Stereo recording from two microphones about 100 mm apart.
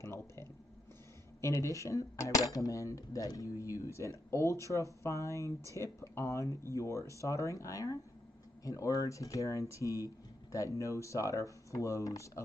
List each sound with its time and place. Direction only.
0.0 s speech: 25° left (ahead or behind)